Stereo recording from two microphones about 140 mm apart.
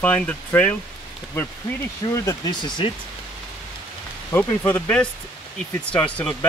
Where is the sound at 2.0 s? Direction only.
20° left (ahead or behind).